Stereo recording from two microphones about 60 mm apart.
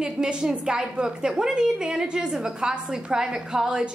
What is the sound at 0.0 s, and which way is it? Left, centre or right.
A woman's voice, centre.